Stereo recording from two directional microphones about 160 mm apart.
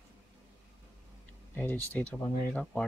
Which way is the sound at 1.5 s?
10° left (ahead or behind).